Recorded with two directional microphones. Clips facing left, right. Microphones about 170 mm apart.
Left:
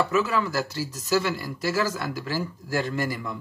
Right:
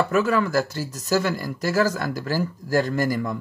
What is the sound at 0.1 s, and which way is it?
Speech, 50° right (ahead or behind).